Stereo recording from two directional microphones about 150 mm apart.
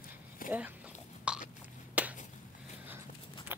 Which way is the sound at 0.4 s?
70° left (ahead or behind).